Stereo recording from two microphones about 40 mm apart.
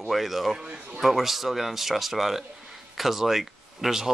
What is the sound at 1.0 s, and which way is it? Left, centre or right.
Speech, centre.